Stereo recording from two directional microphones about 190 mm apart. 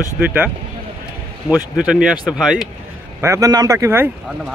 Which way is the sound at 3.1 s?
15° right (ahead or behind).